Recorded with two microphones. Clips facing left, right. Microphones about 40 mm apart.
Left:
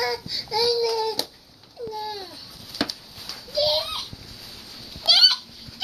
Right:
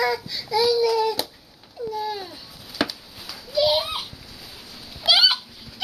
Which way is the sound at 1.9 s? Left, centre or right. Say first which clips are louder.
Right 5 dB; centre.